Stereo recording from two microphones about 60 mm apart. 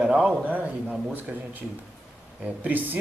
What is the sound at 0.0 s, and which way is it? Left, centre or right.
Speech, centre.